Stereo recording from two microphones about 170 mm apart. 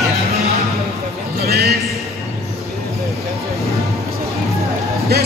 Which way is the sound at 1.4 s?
65° right (ahead or behind).